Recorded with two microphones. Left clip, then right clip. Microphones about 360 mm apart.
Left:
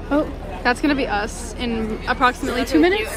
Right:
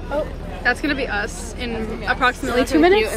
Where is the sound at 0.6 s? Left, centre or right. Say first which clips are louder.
Left 1 dB; centre.